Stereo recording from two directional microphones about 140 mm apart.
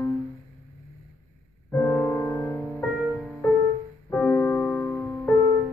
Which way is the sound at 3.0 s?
Centre (ahead or behind).